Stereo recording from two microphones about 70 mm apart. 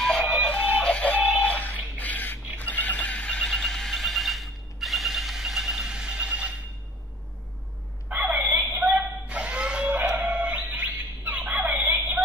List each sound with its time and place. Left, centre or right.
0.0 s music: centre
0.6 s music: right
0.8 s music: centre
2.0 s a sound: left
2.5 s neigh: left; by 6.5 s centre
8.2 s a sound: right